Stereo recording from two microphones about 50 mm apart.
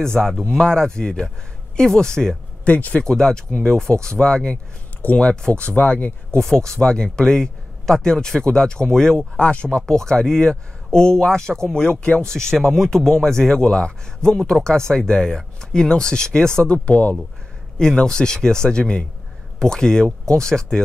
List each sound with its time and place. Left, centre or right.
0.0 s speech: centre
2.6 s speech: left
3.0 s speech: centre
5.8 s speech: left
6.4 s speech: centre
9.4 s speech: left
16.7 s speech: left
17.7 s speech: centre